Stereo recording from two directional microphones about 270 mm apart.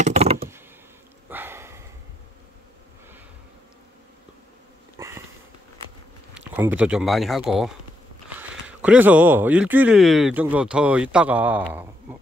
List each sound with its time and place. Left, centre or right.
0.0 s computer keyboard: right
1.3 s sniff: centre
4.9 s sniff: centre
6.3 s speech: centre